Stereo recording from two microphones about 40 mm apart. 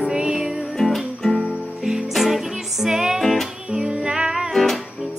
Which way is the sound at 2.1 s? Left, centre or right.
Centre.